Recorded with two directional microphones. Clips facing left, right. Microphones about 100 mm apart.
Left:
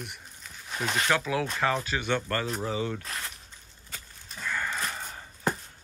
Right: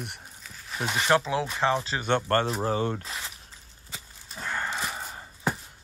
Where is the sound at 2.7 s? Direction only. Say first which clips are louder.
Right 3 dB; 50° right (ahead or behind).